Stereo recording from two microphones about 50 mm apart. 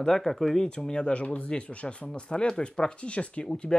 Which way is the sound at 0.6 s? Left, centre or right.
Centre.